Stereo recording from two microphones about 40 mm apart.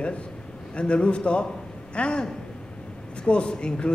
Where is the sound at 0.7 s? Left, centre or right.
Left.